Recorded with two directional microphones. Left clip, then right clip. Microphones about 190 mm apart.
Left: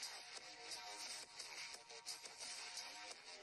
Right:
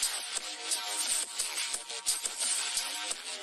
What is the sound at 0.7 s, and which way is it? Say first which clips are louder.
Music: right 17 dB; 90° right.